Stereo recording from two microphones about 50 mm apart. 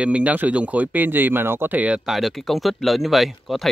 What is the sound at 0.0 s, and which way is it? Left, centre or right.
Speech, right.